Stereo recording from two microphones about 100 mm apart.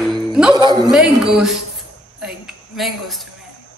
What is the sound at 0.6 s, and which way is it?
Speech, 40° right (ahead or behind).